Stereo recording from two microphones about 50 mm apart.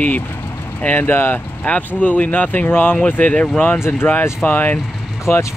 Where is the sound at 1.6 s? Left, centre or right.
Left.